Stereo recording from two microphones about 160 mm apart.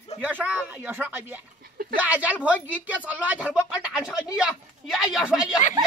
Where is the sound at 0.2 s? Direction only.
10° right (ahead or behind).